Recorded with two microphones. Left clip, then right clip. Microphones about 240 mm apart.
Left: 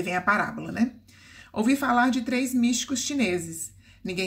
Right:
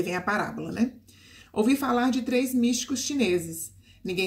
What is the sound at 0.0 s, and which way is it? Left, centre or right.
Speech, centre.